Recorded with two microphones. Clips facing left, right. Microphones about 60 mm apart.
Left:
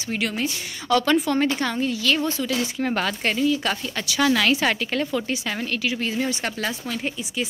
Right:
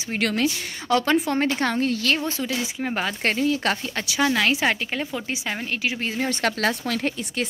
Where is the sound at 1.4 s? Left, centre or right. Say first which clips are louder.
Even; right.